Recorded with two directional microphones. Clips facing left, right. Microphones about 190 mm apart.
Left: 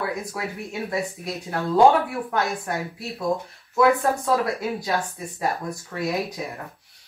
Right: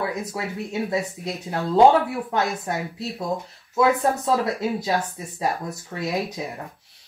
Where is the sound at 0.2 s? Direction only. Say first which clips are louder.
Right 2 dB; 20° right (ahead or behind).